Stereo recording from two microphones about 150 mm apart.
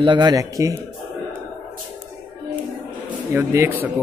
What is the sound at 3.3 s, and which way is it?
Speech, 15° right (ahead or behind).